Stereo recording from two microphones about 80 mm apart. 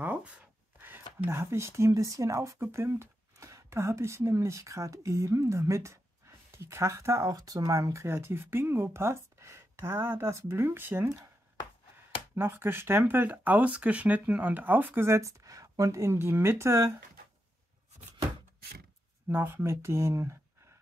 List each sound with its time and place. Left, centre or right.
0.0 s a sound: centre
1.2 s speech: right
12.4 s speech: right
19.2 s speech: right